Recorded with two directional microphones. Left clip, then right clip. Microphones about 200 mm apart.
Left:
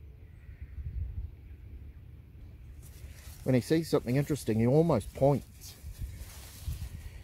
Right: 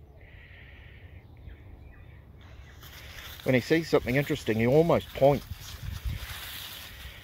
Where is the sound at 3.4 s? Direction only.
10° left (ahead or behind).